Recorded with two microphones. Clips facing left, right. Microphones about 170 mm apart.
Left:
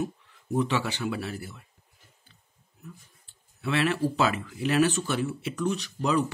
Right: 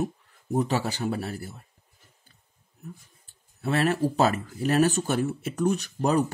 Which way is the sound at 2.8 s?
45° right (ahead or behind).